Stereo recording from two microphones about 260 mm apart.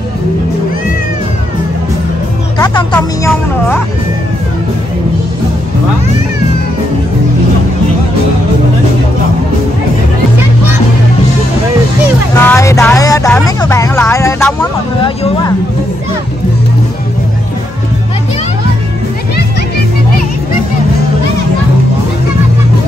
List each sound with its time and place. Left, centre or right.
12.4 s music: centre
13.6 s speech: centre